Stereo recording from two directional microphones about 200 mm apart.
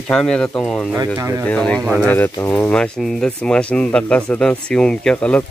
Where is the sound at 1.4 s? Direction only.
5° left (ahead or behind).